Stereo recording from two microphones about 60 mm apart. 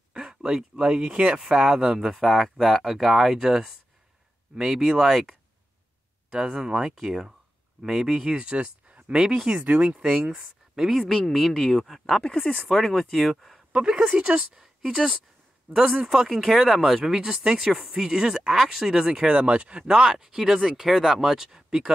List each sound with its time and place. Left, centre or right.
0.1 s speech: centre
6.3 s speech: centre
9.1 s speech: centre
9.5 s speech: centre
12.2 s speech: centre
12.6 s speech: centre
13.7 s speech: centre